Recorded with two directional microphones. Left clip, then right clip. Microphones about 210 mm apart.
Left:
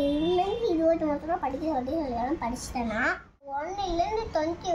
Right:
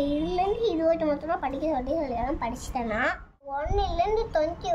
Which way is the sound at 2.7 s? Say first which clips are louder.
Right 1 dB; 35° right (ahead or behind).